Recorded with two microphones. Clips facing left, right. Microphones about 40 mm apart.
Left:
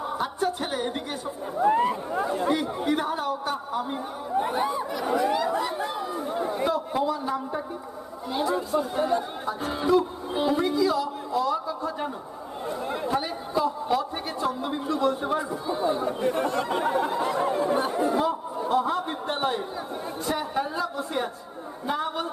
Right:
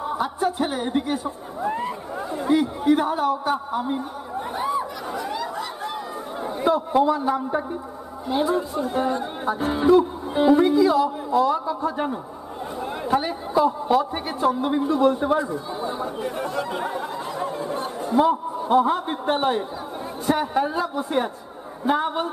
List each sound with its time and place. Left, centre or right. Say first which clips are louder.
0.2 s speech: right 5 dB; centre
1.7 s speech: left 5 dB; centre
2.8 s a woman's voice: right 6 dB; centre
6.3 s chatter: right 3 dB; centre
6.9 s speech: right 6 dB; right
12.8 s a woman's voice: right 1 dB; centre
13.1 s a man's voice: right 8 dB; right
16.2 s a sound: left 2 dB; centre
18.2 s speech: right 5 dB; right